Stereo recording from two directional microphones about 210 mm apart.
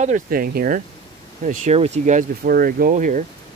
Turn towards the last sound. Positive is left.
turn(degrees=-40)  # may be behind; listen again after turning